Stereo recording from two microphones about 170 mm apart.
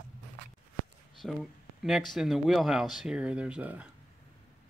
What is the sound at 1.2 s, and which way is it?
Speech, centre (ahead or behind).